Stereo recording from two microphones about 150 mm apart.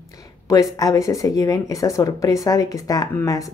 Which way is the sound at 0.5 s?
25° left (ahead or behind).